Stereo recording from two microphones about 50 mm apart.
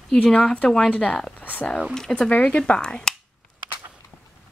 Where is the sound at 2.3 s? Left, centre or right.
Left.